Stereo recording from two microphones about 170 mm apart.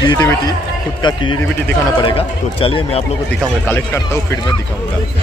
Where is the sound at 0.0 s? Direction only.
25° left (ahead or behind).